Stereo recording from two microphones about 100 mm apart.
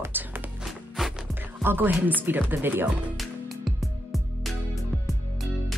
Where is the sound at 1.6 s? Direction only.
20° right (ahead or behind).